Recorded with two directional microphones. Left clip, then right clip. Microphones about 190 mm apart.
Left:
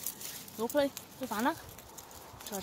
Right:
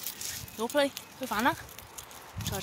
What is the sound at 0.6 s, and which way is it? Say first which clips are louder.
Speech: right 3 dB; 15° right (ahead or behind).